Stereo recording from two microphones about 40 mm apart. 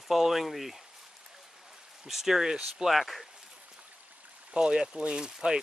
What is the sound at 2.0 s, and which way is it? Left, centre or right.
Speech, centre.